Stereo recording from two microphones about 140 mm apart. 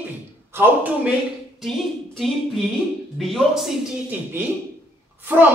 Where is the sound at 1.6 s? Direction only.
Centre (ahead or behind).